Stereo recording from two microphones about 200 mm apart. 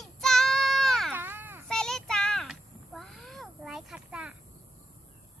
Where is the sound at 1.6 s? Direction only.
Centre (ahead or behind).